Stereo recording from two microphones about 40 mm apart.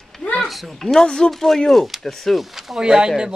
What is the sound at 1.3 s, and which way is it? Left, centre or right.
A man's voice, centre.